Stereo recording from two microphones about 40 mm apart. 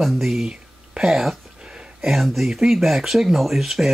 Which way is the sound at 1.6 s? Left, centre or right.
Right.